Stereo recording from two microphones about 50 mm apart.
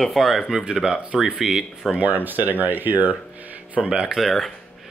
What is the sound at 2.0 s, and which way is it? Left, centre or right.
Speech, right.